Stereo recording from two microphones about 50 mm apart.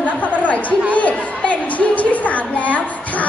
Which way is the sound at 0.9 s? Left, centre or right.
Left.